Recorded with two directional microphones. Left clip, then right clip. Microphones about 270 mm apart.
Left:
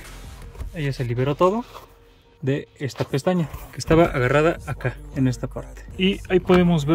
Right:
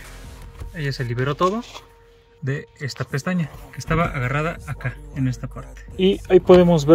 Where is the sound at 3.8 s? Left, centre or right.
Centre.